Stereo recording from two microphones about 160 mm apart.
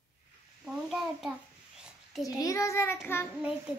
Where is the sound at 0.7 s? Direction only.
5° right (ahead or behind).